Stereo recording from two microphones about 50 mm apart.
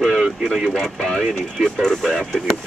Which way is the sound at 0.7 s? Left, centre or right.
Centre.